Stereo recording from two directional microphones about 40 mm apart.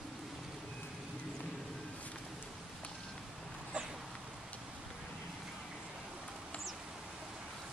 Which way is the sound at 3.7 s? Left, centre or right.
Right.